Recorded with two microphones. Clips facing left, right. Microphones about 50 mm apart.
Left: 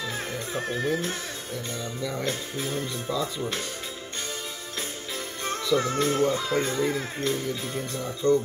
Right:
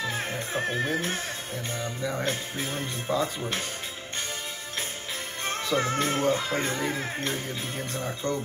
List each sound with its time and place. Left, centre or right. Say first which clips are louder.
0.0 s music: right 1 dB; right
2.0 s speech: even; right
5.8 s speech: left 1 dB; right